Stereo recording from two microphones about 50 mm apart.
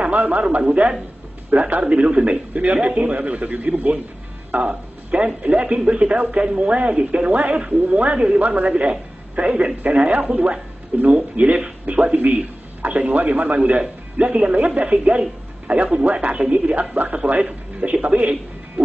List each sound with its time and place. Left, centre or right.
0.0 s speech: right